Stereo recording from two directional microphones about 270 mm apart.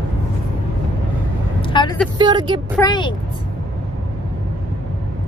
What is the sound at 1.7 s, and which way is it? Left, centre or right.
Vehicle, centre.